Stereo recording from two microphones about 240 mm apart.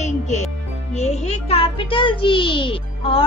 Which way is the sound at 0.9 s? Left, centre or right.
Left.